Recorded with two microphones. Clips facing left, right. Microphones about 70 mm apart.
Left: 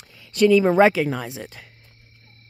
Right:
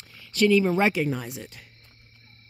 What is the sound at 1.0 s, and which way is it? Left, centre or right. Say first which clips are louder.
Speech: left 3 dB; left.